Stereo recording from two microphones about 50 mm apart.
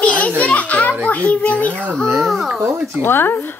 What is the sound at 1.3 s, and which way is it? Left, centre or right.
Speech, left.